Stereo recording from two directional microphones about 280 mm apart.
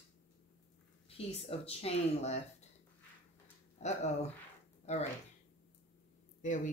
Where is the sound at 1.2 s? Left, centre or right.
Left.